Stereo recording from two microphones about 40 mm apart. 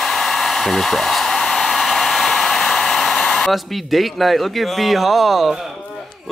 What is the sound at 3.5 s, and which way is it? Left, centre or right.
Speech, centre.